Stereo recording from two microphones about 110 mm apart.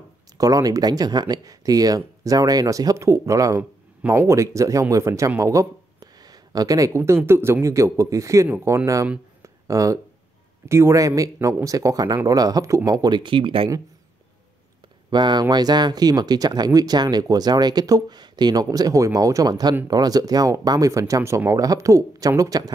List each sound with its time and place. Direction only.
0.4 s speech: 35° right (ahead or behind)
9.4 s a sound: 30° right (ahead or behind)
10.7 s speech: 25° right (ahead or behind); by 13.7 s 50° right (ahead or behind)
15.0 s speech: 40° right (ahead or behind)